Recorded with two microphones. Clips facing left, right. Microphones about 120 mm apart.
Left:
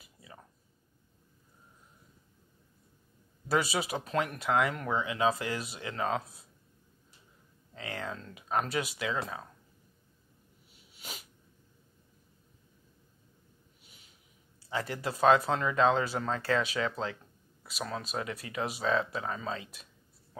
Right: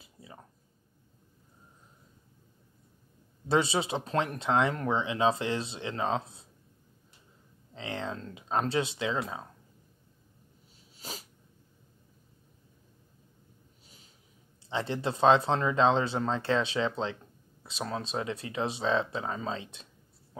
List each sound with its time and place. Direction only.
0.0 s a sound: 25° right (ahead or behind)
3.4 s speech: 25° right (ahead or behind)
7.7 s speech: 25° right (ahead or behind)
11.0 s sneeze: 35° right (ahead or behind)
13.8 s snort: 35° right (ahead or behind)
14.7 s speech: 25° right (ahead or behind)